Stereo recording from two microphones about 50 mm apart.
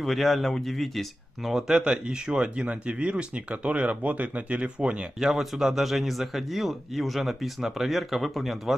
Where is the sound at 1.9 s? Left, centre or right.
Centre.